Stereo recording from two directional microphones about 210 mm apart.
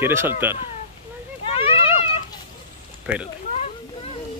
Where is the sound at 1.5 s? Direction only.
25° left (ahead or behind).